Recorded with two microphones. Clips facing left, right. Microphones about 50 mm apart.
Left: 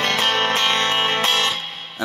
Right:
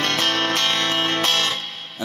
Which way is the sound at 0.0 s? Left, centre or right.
Centre.